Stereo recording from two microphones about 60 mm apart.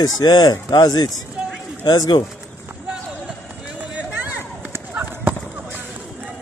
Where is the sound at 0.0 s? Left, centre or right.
Left.